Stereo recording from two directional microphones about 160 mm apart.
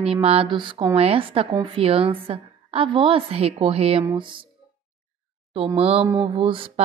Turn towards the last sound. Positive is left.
turn(degrees=-35)  # may be behind; listen again after turning